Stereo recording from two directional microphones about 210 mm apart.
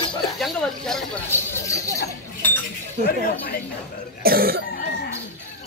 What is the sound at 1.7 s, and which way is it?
Chink, 15° left (ahead or behind).